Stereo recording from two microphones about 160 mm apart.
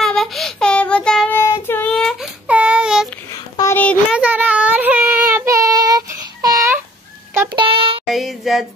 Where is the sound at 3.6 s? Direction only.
15° left (ahead or behind).